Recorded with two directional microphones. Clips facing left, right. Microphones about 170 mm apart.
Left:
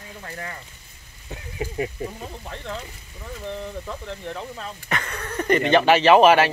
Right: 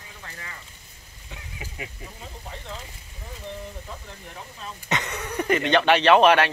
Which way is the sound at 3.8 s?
85° left.